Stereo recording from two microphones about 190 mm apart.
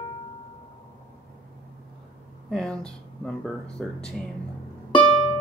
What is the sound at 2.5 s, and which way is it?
Speech, 5° left (ahead or behind).